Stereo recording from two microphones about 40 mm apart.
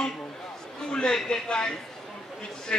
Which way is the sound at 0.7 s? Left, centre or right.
Left.